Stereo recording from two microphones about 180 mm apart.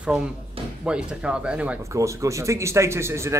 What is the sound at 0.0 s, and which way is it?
Speech, 5° right (ahead or behind).